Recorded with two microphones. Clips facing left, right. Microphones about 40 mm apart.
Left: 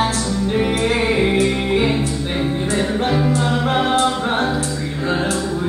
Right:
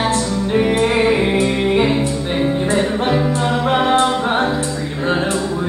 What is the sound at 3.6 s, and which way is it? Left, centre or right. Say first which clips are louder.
A capella: right 4 dB; right.